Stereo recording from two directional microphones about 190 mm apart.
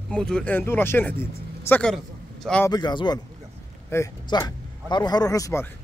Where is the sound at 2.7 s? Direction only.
20° left (ahead or behind).